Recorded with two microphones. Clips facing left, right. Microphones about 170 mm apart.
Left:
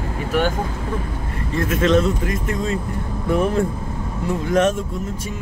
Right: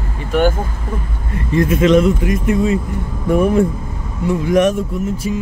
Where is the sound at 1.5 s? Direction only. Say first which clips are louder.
Right 5 dB; 15° right (ahead or behind).